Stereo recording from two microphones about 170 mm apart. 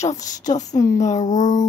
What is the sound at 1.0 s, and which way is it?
Speech, 45° left (ahead or behind).